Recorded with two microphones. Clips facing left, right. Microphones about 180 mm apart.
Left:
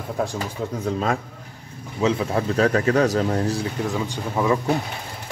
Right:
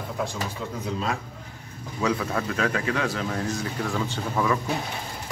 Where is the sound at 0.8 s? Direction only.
50° left (ahead or behind).